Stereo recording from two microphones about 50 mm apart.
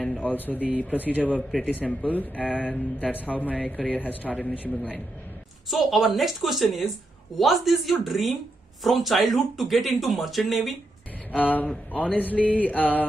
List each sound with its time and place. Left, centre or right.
0.1 s a sound: left
0.8 s speech: left
2.4 s speech: centre
3.1 s speech: left
5.7 s speech: centre
11.3 s speech: left